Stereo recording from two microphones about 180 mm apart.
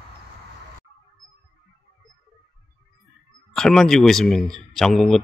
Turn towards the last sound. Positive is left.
turn(degrees=0)  # may be behind; listen again after turning